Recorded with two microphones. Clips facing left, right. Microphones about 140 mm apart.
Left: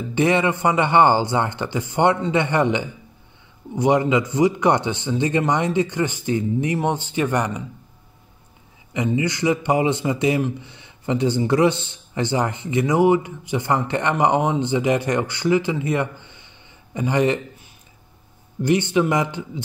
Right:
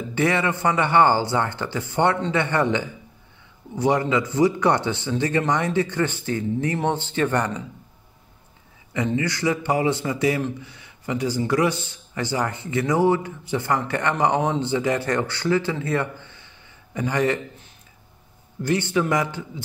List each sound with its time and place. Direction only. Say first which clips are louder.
0.1 s a man's voice: left 3 dB; 20° left (ahead or behind)
8.9 s a man's voice: left 2 dB; 20° left (ahead or behind)
18.6 s a man's voice: left 4 dB; 20° left (ahead or behind)